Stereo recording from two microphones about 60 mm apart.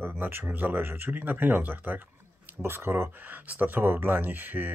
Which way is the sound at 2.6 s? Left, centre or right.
Right.